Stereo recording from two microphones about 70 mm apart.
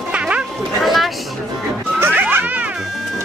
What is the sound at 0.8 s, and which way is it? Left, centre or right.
Chatter, centre.